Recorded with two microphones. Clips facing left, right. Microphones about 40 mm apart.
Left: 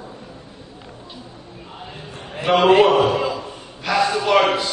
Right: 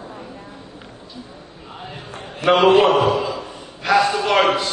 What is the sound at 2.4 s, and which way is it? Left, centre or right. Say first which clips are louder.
Speech: right 2 dB; right.